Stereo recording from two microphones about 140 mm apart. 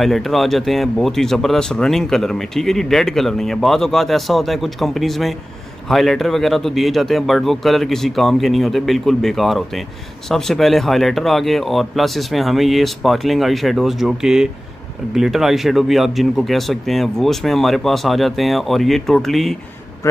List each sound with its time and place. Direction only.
0.0 s speech: centre (ahead or behind)